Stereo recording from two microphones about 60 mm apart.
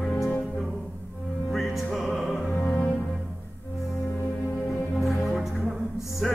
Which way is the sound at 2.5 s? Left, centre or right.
Left.